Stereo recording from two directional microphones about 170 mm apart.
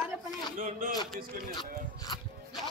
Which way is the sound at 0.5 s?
50° right (ahead or behind).